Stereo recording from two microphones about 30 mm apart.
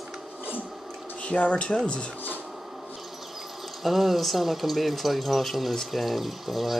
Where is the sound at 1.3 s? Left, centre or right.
Left.